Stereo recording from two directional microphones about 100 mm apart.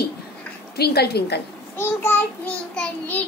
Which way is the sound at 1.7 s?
25° left (ahead or behind).